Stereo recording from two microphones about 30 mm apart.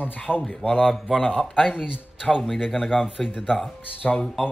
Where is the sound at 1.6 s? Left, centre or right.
Right.